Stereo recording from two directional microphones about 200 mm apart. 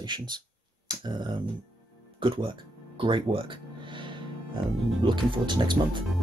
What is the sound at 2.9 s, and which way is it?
Music, 25° right (ahead or behind).